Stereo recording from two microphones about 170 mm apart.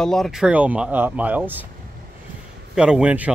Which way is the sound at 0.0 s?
Centre (ahead or behind).